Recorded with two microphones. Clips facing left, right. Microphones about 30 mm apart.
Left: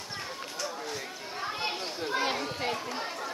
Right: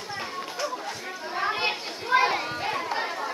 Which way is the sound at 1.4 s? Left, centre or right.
Right.